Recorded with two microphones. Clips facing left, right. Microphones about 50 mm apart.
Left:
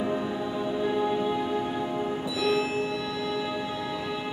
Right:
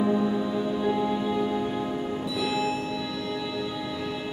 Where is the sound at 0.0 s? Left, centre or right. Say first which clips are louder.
Right 4 dB; centre.